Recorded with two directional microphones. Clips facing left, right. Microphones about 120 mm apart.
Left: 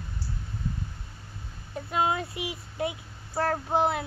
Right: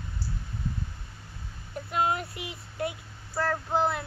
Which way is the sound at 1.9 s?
20° left (ahead or behind).